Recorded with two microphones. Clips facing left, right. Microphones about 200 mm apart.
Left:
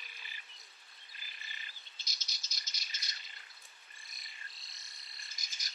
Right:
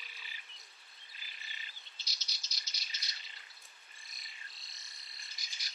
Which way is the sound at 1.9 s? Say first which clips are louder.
Even; 50° left (ahead or behind).